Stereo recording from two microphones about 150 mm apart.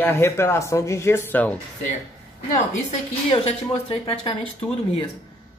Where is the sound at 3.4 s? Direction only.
40° left (ahead or behind).